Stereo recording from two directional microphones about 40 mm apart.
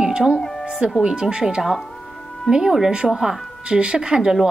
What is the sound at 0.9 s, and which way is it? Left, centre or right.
A woman's voice, centre.